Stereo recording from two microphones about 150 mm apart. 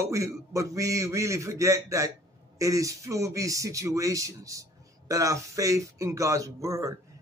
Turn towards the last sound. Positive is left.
turn(degrees=-20)  # may be behind; listen again after turning